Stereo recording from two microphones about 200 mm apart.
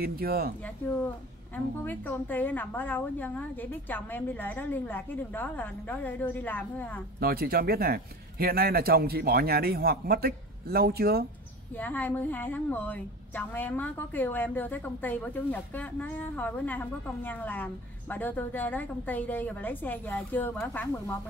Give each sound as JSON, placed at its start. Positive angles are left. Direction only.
{"t": 0.0, "sound": "speech", "side_deg": -50}
{"t": 0.8, "sound": "a woman's voice", "side_deg": 10}
{"t": 7.2, "sound": "speech", "side_deg": -50}
{"t": 11.7, "sound": "a woman's voice", "side_deg": 10}